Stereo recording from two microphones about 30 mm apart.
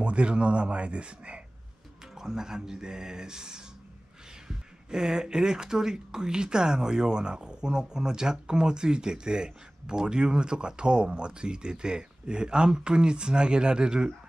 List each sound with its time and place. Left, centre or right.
0.0 s speech: right
2.1 s speech: centre